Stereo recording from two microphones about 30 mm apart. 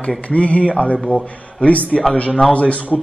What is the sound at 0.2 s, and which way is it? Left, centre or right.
Speech, left.